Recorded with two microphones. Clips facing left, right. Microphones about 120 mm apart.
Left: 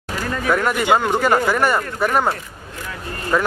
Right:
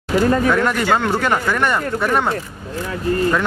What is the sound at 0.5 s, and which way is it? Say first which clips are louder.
Speech: right 1 dB; 5° left (ahead or behind).